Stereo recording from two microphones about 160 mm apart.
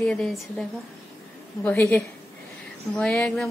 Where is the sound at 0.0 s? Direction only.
5° left (ahead or behind).